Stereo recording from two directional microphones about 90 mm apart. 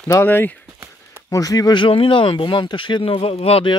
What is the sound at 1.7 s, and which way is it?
Speech, 80° left.